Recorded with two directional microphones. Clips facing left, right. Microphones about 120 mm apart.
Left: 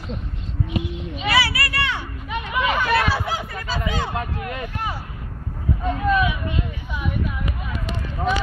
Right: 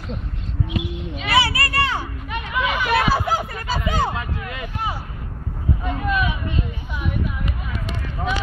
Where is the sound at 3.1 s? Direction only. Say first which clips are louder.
Right 4 dB; 45° right (ahead or behind).